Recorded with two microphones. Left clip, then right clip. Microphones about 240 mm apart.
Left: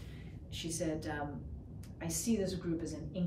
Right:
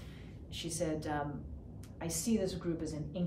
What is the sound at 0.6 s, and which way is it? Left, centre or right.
A woman's voice, centre.